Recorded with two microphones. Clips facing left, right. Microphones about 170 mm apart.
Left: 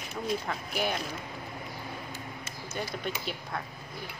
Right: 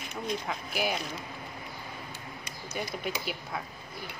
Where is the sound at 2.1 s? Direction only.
15° right (ahead or behind).